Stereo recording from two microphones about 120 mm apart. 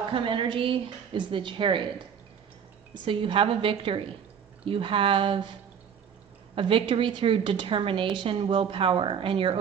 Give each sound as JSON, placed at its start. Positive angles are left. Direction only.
{"t": 0.1, "sound": "a woman's voice", "side_deg": -45}
{"t": 3.1, "sound": "a woman's voice", "side_deg": -45}